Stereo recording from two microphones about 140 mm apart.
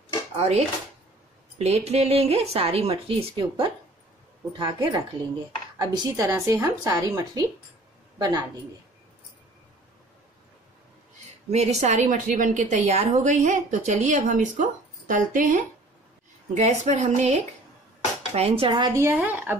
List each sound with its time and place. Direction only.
0.4 s speech: 50° right (ahead or behind)
5.8 s a woman's voice: 25° right (ahead or behind)
11.5 s a woman's voice: 50° right (ahead or behind); by 15.6 s 70° right (ahead or behind)
16.5 s a woman's voice: 55° right (ahead or behind)
18.3 s speech: 45° right (ahead or behind)
18.9 s speech: 15° right (ahead or behind)